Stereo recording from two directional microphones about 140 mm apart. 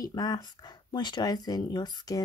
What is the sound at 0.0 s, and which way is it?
Speech, 30° left (ahead or behind).